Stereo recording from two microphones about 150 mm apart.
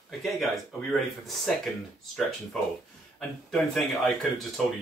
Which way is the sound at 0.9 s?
Centre (ahead or behind).